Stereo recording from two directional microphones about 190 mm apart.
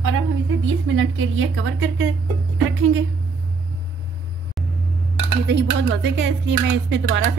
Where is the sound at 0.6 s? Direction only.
90° right.